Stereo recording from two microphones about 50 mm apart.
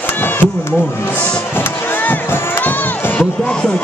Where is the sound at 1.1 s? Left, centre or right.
Left.